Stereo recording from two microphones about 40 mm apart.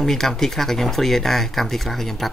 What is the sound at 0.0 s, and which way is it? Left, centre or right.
Speech, centre.